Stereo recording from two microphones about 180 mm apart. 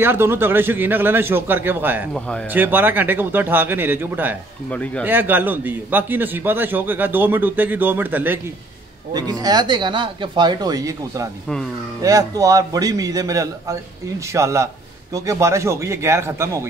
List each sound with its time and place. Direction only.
0.0 s a man's voice: 10° right (ahead or behind)
2.1 s speech: 5° left (ahead or behind)
2.5 s a man's voice: 10° right (ahead or behind)
4.6 s speech: 10° left (ahead or behind)
5.0 s a man's voice: 10° right (ahead or behind)
9.1 s a man's voice: 20° right (ahead or behind)